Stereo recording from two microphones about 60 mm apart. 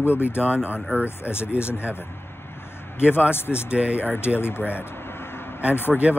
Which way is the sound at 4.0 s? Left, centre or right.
Left.